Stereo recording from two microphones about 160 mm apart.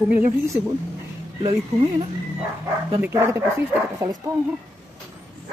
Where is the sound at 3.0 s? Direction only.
15° right (ahead or behind).